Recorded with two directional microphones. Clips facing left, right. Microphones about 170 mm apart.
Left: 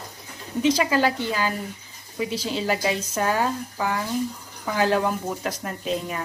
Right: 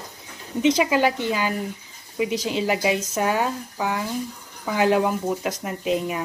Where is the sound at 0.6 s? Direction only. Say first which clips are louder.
Right 2 dB; 20° right (ahead or behind).